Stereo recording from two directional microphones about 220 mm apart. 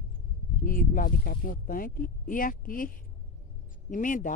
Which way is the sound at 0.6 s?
40° left (ahead or behind).